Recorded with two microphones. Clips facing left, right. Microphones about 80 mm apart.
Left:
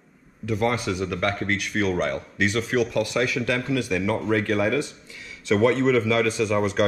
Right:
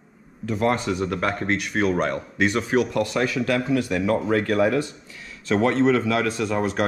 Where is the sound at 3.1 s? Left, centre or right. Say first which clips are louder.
Right 1 dB; right.